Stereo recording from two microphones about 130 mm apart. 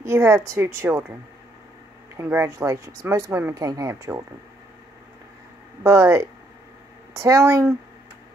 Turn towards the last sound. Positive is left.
turn(degrees=-20)  # may be behind; listen again after turning